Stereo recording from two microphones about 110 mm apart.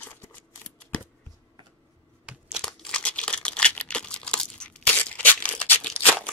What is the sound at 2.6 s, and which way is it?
Crumpling, 5° left (ahead or behind).